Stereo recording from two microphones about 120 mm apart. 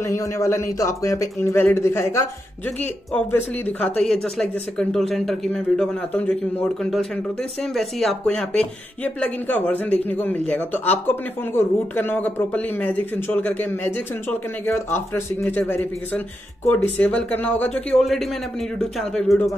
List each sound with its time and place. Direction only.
0.0 s speech: 25° left (ahead or behind)
3.3 s speech: 15° left (ahead or behind)